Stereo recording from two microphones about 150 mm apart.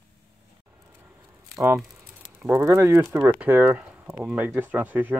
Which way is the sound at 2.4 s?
15° right (ahead or behind).